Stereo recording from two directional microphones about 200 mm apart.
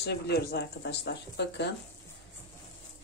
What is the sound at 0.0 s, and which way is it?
Speech, 55° left (ahead or behind).